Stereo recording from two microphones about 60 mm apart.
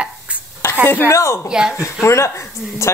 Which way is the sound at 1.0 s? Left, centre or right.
Left.